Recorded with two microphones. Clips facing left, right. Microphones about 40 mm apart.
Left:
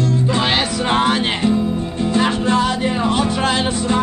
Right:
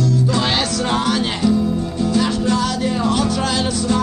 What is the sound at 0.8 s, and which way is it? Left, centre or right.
Music, left.